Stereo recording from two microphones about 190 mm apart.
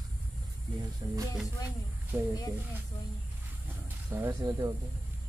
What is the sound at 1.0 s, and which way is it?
Speech, 20° right (ahead or behind).